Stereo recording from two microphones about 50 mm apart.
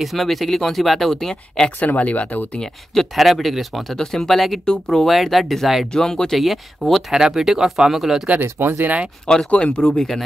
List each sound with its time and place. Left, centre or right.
0.0 s speech: centre
1.8 s speech: left
2.6 s speech: centre
5.1 s speech: centre
5.9 s speech: centre
6.3 s speech: centre
7.2 s speech: centre
8.4 s speech: right
8.8 s speech: right
9.5 s speech: left
9.9 s speech: centre